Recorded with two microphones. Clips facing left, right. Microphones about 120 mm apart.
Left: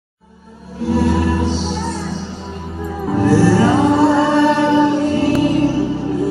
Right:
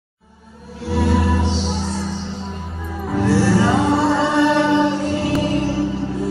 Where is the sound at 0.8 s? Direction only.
Centre (ahead or behind).